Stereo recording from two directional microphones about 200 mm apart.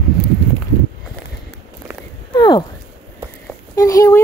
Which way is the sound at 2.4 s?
20° left (ahead or behind).